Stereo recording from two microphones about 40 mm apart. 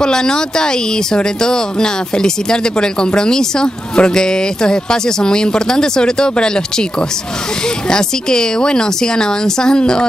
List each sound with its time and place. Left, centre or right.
0.0 s speech: centre